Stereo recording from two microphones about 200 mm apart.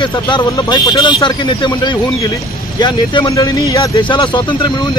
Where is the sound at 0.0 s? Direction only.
20° left (ahead or behind).